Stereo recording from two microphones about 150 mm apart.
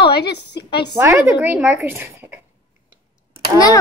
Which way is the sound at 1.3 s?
10° right (ahead or behind).